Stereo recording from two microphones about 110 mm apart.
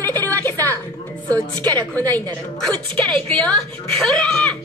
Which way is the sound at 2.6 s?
5° left (ahead or behind).